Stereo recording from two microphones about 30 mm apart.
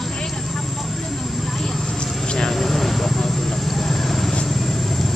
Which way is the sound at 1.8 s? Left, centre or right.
Left.